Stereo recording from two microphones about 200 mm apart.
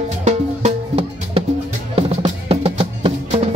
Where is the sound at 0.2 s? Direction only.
35° right (ahead or behind).